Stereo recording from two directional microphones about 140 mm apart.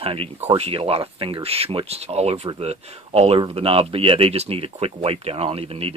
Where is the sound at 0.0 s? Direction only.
40° right (ahead or behind).